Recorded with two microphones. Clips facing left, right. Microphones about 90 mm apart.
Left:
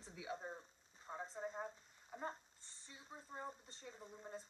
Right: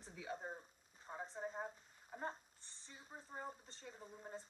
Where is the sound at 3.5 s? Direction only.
5° right (ahead or behind).